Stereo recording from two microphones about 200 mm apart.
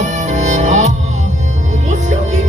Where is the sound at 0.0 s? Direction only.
40° right (ahead or behind).